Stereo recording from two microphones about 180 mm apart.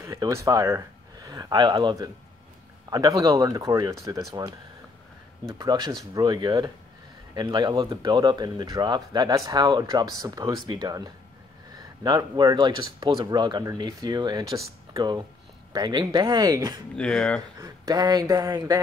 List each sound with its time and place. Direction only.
0.0 s speech: 15° right (ahead or behind)
5.4 s speech: 20° right (ahead or behind)
16.9 s speech: 5° left (ahead or behind)
17.6 s speech: 20° right (ahead or behind)